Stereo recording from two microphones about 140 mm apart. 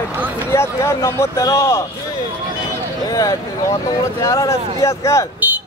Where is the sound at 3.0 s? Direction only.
25° left (ahead or behind).